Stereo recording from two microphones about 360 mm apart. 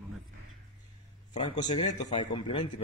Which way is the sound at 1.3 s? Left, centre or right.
Centre.